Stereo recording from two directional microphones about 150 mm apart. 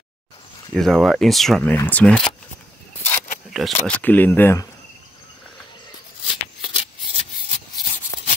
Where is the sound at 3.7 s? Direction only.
10° left (ahead or behind).